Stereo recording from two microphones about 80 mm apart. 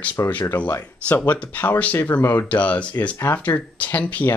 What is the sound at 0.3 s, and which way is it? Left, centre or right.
Speech, left.